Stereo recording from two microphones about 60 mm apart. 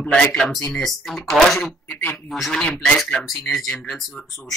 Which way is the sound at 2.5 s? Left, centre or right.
Left.